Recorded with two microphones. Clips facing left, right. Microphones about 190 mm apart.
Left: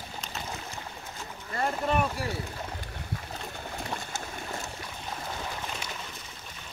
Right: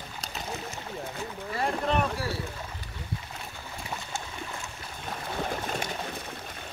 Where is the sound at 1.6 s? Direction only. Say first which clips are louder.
Even; 5° left (ahead or behind).